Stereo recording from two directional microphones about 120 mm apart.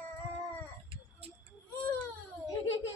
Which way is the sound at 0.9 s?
55° right (ahead or behind).